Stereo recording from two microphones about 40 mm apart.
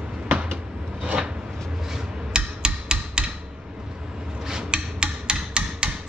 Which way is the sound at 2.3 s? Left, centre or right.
Right.